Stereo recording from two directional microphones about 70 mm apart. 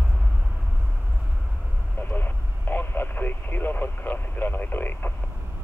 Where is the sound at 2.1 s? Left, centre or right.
Left.